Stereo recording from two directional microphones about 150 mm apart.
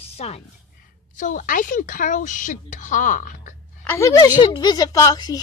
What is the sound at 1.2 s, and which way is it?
Speech, 60° left (ahead or behind).